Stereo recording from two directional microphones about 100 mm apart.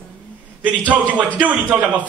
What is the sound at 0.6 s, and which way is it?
A man's voice, 15° right (ahead or behind).